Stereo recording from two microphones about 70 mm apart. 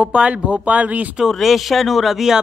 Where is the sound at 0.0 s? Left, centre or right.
Centre.